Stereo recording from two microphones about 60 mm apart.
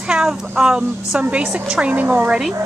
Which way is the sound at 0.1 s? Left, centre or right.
Centre.